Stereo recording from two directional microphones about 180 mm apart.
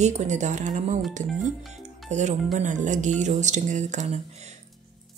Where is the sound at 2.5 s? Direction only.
45° right (ahead or behind).